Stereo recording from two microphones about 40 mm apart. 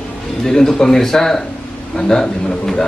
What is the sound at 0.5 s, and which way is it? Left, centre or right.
Speech, centre.